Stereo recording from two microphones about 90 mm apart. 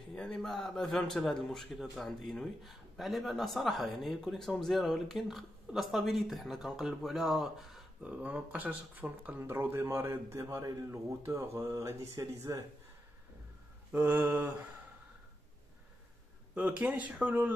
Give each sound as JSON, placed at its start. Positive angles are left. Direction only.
{"t": 0.1, "sound": "a man's voice", "side_deg": 10}
{"t": 8.0, "sound": "a man's voice", "side_deg": -15}
{"t": 13.9, "sound": "mantra", "side_deg": -20}
{"t": 16.5, "sound": "speech", "side_deg": -15}